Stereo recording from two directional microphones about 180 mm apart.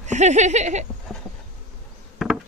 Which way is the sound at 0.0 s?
40° right (ahead or behind).